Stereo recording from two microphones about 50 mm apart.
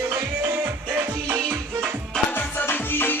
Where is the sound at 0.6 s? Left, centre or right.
Right.